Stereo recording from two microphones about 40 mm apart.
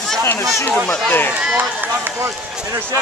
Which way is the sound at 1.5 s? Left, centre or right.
Right.